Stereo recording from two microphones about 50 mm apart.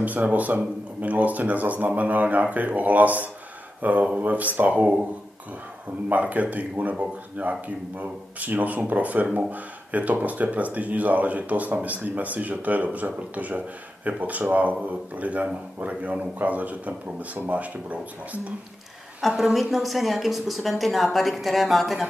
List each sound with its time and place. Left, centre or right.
0.0 s speech: right
6.0 s speech: right
19.2 s a woman's voice: centre